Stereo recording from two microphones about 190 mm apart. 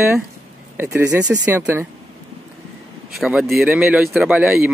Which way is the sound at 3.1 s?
Centre (ahead or behind).